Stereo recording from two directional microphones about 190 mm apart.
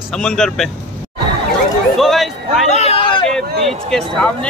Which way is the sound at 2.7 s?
30° left (ahead or behind).